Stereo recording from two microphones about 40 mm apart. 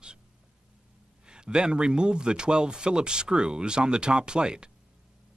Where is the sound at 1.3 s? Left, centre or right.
Right.